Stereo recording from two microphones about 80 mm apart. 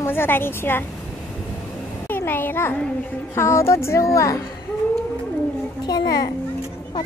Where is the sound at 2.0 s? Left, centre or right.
Left.